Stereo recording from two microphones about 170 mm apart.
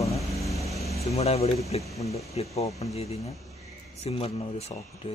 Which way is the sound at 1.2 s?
35° left (ahead or behind).